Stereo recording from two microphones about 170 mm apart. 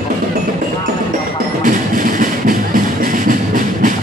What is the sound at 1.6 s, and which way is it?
Music, 50° right (ahead or behind).